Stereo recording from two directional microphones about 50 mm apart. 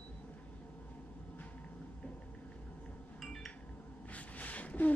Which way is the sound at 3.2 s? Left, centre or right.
Centre.